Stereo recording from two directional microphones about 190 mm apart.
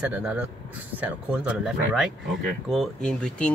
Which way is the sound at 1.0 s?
5° right (ahead or behind).